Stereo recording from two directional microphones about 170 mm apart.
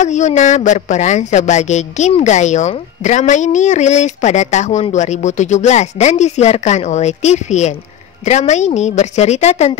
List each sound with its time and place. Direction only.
0.0 s speech: 45° left (ahead or behind)